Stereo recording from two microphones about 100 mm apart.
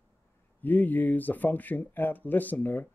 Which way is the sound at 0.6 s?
15° left (ahead or behind).